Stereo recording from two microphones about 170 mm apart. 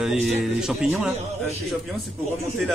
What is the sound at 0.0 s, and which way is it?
Speech, 5° right (ahead or behind).